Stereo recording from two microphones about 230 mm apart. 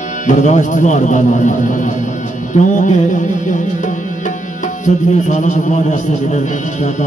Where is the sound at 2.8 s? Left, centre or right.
Left.